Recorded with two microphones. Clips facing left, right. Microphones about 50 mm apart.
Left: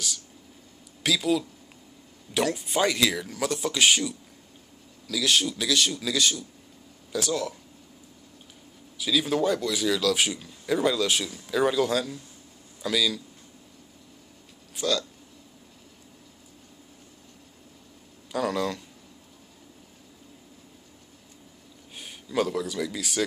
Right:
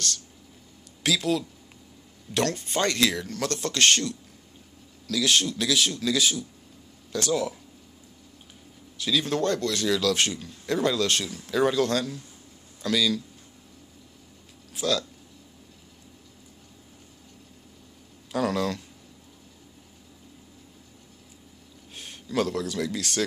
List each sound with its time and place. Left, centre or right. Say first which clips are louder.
1.0 s speech: even; centre
8.9 s speech: left 1 dB; centre
14.8 s speech: even; centre
18.3 s speech: right 1 dB; centre
21.9 s speech: even; centre